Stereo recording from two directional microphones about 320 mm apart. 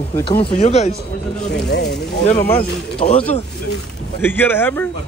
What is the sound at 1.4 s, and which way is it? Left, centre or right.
Speech, left.